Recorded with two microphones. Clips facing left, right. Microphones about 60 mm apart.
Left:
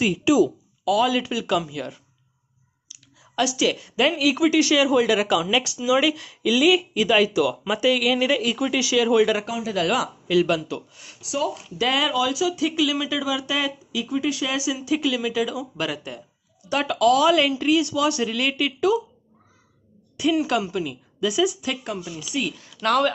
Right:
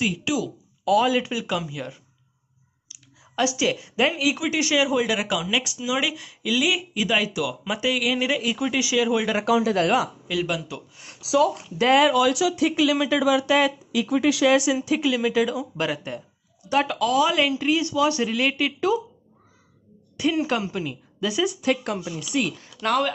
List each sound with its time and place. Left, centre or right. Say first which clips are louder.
0.0 s speech: left 7 dB; centre
0.8 s a woman's voice: right 1 dB; right; by 2.0 s centre
2.9 s computer keyboard: even; right
4.5 s speech: left 4 dB; centre
9.4 s a man's voice: right 8 dB; right
9.8 s a woman's voice: right 2 dB; right
10.2 s speech: left 6 dB; centre
11.4 s a woman's voice: right 3 dB; right
12.2 s speech: right 2 dB; right
15.0 s a woman's voice: right 2 dB; right
20.2 s a woman's voice: left 2 dB; right
22.7 s speech: left 5 dB; centre